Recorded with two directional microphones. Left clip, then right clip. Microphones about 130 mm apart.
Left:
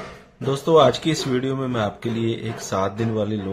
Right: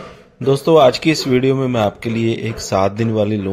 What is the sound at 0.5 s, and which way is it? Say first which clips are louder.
Speech: right 5 dB; 55° right (ahead or behind).